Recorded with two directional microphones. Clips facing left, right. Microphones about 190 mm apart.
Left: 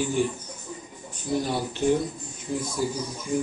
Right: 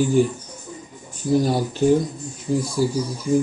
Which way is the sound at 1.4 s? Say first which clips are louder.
Right 7 dB; 40° right (ahead or behind).